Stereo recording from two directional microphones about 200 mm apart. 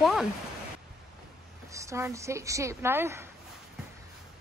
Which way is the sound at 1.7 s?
15° right (ahead or behind).